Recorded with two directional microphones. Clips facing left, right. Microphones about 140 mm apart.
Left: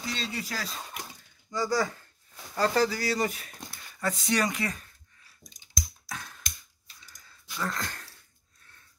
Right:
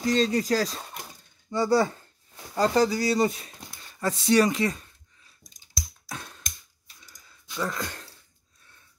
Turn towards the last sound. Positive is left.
turn(degrees=-10)  # may be behind; listen again after turning